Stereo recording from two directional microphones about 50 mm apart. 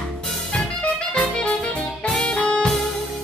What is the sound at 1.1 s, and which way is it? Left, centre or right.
Music, left.